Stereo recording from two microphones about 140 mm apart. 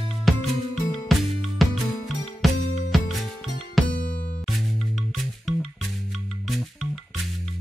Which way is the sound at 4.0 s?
80° left.